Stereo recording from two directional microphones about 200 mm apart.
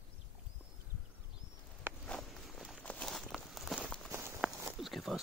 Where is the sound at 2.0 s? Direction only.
5° left (ahead or behind).